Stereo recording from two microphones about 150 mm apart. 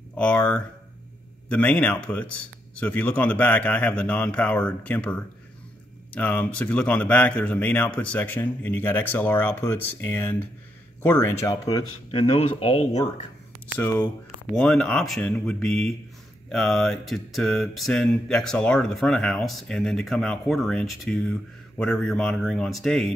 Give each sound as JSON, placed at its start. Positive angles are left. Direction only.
{"t": 0.2, "sound": "speech", "side_deg": 5}
{"t": 12.1, "sound": "speech", "side_deg": 40}
{"t": 13.7, "sound": "speech", "side_deg": 20}
{"t": 14.5, "sound": "a sound", "side_deg": 5}